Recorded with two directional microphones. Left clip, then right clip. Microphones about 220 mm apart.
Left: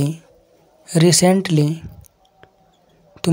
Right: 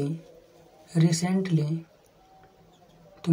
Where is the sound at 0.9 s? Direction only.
45° left (ahead or behind).